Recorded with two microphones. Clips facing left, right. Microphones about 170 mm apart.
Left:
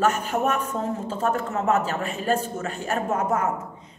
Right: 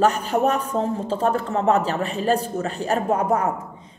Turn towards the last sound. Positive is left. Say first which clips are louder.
# right 4 dB
turn(degrees=-35)  # may be behind; listen again after turning